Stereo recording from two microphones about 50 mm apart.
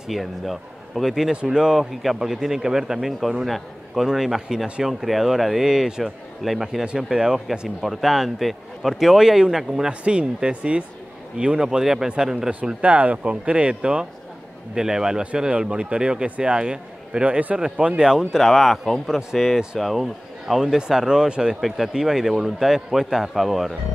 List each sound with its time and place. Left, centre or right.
0.1 s a man's voice: centre
1.3 s a man's voice: centre
6.8 s speech: centre
7.8 s a man's voice: centre
10.0 s speech: right
12.8 s speech: right
14.8 s speech: centre
18.4 s a man's voice: centre
21.5 s a man's voice: centre